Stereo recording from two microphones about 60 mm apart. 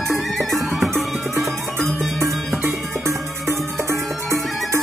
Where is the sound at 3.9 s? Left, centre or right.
Right.